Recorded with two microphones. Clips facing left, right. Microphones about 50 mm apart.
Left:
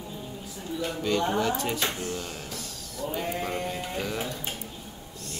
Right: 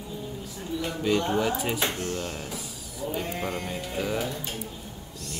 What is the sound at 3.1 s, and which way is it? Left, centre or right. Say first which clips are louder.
Sheep: even; centre.